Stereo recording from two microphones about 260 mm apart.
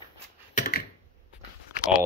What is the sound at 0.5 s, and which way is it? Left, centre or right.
Computer keyboard, left.